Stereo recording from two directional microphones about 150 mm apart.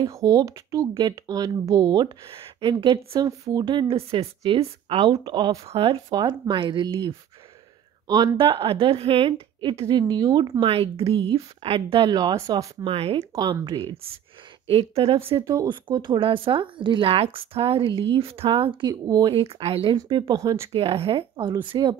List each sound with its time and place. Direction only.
0.1 s speech: 25° right (ahead or behind)
10.7 s speech: 40° right (ahead or behind); by 12.6 s 25° right (ahead or behind)
12.8 s speech: 40° right (ahead or behind)
13.2 s speech: 20° right (ahead or behind)
14.7 s speech: 40° right (ahead or behind)
15.4 s speech: 25° right (ahead or behind)
19.3 s speech: 40° right (ahead or behind)
20.0 s speech: 25° right (ahead or behind)
20.7 s speech: 40° right (ahead or behind)